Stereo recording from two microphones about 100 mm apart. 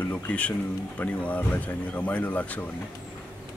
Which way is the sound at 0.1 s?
15° left (ahead or behind).